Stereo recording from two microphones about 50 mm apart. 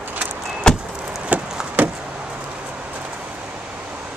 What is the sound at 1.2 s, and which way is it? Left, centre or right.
Wood, right.